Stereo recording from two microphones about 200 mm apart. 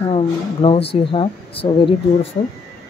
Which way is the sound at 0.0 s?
30° left (ahead or behind).